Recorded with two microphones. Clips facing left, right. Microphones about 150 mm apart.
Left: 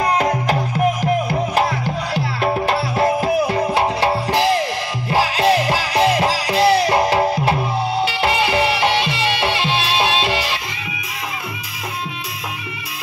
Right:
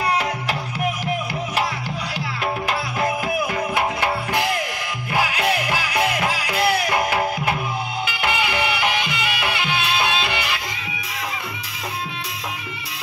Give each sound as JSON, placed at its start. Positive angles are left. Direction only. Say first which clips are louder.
{"t": 0.0, "sound": "music", "louder": "left 5 dB", "side_deg": 35}